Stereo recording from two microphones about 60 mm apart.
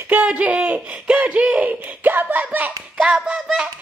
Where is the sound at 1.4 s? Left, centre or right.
Centre.